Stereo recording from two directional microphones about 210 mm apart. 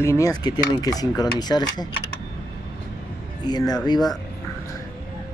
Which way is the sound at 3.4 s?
20° left (ahead or behind).